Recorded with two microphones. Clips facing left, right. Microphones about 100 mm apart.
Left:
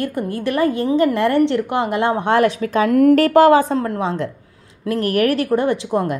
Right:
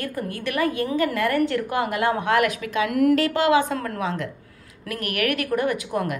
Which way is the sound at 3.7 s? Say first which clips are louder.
Left 6 dB; 25° left (ahead or behind).